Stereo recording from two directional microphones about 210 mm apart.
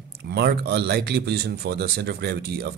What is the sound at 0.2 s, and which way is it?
Speech, 50° right (ahead or behind).